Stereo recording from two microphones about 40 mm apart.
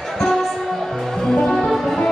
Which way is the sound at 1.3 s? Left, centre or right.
Centre.